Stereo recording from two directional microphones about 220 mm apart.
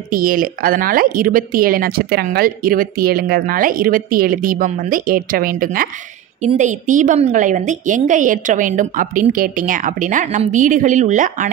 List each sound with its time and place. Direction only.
0.1 s speech: 40° right (ahead or behind)